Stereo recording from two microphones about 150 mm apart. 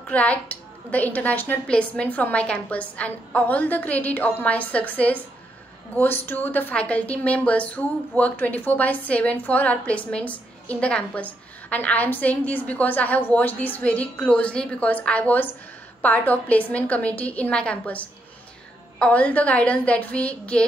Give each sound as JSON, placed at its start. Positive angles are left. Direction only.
{"t": 0.1, "sound": "a woman's voice", "side_deg": 10}